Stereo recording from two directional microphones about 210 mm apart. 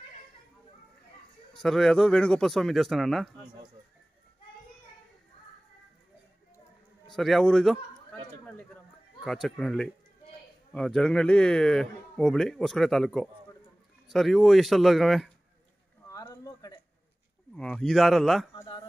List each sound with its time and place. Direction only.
1.5 s a man's voice: centre (ahead or behind)
7.1 s a sound: centre (ahead or behind)
9.2 s a man's voice: centre (ahead or behind)
16.1 s a sound: 15° left (ahead or behind)
17.6 s a man's voice: 5° left (ahead or behind)
18.5 s speech: 20° left (ahead or behind)